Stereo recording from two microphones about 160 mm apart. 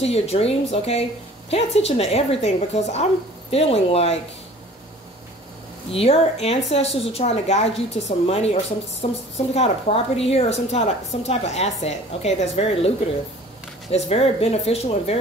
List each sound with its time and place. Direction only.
0.0 s a woman's voice: 40° left (ahead or behind)
5.9 s a woman's voice: 40° left (ahead or behind)